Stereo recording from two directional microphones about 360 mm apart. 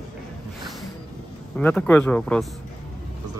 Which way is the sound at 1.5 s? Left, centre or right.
Centre.